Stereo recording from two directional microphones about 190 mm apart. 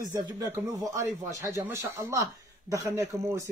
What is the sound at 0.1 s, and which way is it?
Speech, 15° right (ahead or behind).